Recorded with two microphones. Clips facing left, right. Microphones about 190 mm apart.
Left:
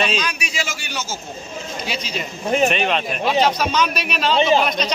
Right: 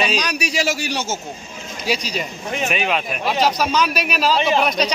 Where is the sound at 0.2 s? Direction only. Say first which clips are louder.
Right 5 dB; 40° right (ahead or behind).